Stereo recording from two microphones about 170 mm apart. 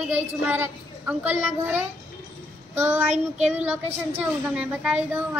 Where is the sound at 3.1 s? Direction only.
40° right (ahead or behind).